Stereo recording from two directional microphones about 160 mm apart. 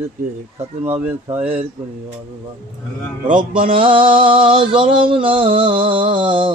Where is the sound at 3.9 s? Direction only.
35° right (ahead or behind).